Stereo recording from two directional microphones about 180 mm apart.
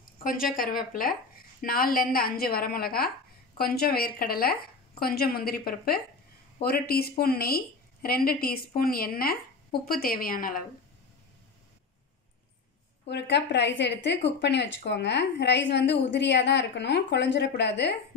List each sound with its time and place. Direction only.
0.2 s a woman's voice: 50° left (ahead or behind)
1.6 s speech: 55° left (ahead or behind)
13.1 s a woman's voice: 75° left (ahead or behind)